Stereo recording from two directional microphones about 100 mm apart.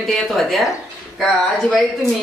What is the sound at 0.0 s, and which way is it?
Speech, centre (ahead or behind).